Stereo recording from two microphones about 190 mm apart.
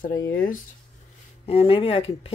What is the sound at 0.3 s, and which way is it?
Speech, 50° left (ahead or behind).